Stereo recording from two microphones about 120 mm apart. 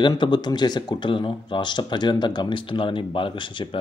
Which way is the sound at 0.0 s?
40° left (ahead or behind).